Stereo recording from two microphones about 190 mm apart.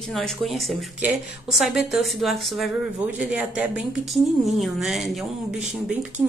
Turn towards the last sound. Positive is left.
turn(degrees=-5)  # may be behind; listen again after turning